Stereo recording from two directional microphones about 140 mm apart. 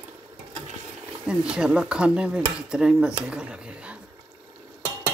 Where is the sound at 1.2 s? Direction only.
5° right (ahead or behind).